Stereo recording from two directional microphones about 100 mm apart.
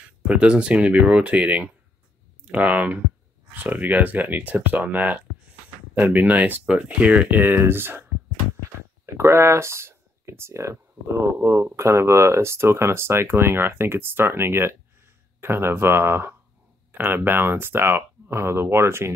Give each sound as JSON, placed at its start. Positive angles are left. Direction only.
{"t": 0.3, "sound": "speech", "side_deg": -10}